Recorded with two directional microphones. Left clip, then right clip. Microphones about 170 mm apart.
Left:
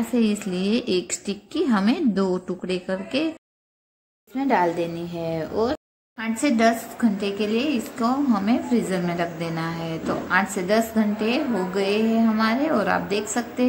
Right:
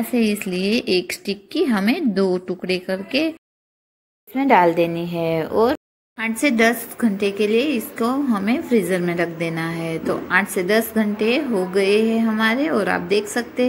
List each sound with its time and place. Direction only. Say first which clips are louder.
0.1 s a woman's voice: right 4 dB; 10° right (ahead or behind)
4.4 s a woman's voice: right 6 dB; 10° right (ahead or behind)